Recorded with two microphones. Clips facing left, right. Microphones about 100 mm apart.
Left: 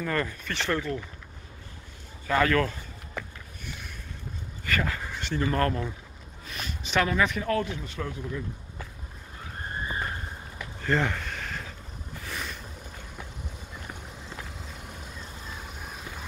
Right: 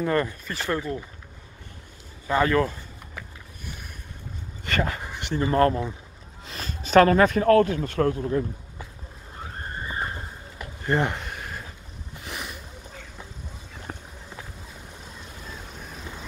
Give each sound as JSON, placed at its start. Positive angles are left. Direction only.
{"t": 0.0, "sound": "speech", "side_deg": -25}
{"t": 0.5, "sound": "speech", "side_deg": -10}
{"t": 2.2, "sound": "speech", "side_deg": -20}
{"t": 3.2, "sound": "a sound", "side_deg": -5}
{"t": 4.6, "sound": "speech", "side_deg": -25}
{"t": 10.8, "sound": "a sound", "side_deg": -15}
{"t": 12.3, "sound": "boat", "side_deg": -15}
{"t": 13.9, "sound": "run", "side_deg": -40}